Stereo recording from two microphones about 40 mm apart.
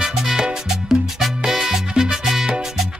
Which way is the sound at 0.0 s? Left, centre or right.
Centre.